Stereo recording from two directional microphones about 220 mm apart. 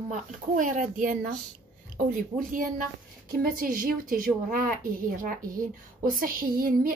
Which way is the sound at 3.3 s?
40° right (ahead or behind).